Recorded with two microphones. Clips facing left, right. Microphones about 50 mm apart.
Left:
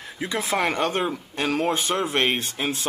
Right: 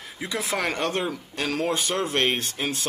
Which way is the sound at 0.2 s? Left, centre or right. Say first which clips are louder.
Left 3 dB; left.